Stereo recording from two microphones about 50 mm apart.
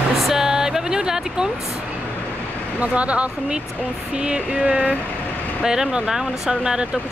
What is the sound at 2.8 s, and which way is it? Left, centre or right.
Speech, right.